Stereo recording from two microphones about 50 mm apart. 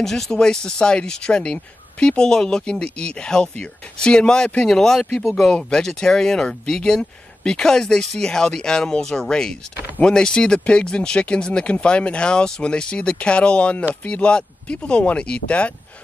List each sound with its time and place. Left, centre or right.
0.0 s speech: centre; by 15.7 s left